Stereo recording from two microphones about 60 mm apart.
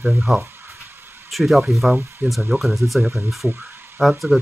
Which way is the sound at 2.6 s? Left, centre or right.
Centre.